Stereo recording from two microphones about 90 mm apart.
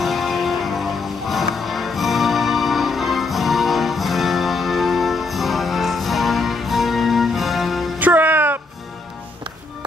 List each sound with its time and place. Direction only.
0.0 s music: centre (ahead or behind)
8.0 s music: 20° right (ahead or behind)